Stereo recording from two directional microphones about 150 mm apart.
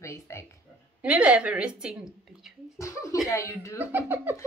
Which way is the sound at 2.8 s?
20° left (ahead or behind).